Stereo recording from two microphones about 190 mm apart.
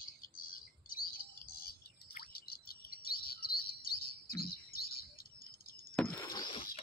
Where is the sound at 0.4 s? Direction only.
50° left (ahead or behind).